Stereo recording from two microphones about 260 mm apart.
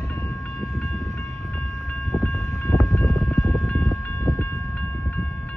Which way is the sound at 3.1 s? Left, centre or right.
Right.